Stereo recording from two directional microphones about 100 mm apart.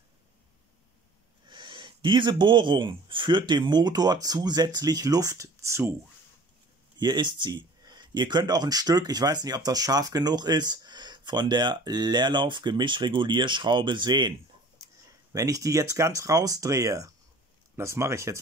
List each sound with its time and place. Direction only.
1.5 s speech: 55° right (ahead or behind); by 5.9 s 30° right (ahead or behind)
7.0 s speech: 45° right (ahead or behind)
15.3 s speech: 35° right (ahead or behind)